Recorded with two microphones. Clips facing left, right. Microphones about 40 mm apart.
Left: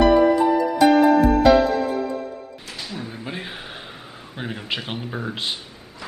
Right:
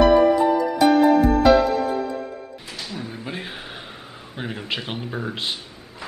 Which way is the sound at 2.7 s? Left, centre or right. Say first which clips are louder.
Even; centre.